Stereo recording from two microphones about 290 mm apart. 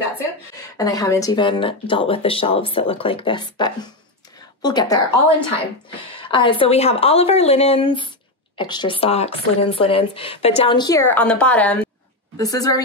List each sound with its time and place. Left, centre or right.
0.6 s speech: centre
6.2 s speech: centre